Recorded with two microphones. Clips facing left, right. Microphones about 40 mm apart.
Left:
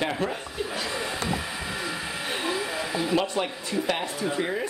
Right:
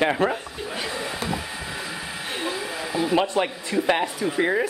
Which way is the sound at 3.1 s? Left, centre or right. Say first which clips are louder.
Right 5 dB; centre.